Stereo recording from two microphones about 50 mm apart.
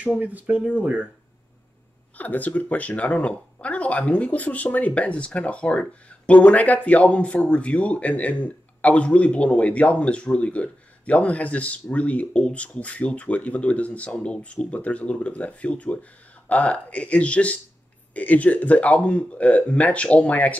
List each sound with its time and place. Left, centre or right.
0.2 s speech: right
2.1 s a man's voice: left